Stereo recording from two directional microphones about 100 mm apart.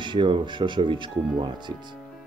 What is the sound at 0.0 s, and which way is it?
Speech, 55° right (ahead or behind).